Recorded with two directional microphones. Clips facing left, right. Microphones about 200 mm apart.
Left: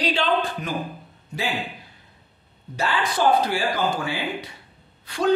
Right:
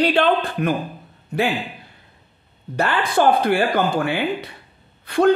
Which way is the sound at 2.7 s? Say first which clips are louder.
Right 5 dB; 55° right (ahead or behind).